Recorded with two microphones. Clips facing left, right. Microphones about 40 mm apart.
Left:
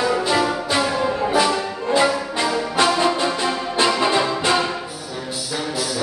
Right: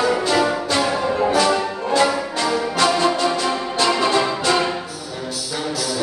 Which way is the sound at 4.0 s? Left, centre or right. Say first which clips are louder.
Right 1 dB; centre.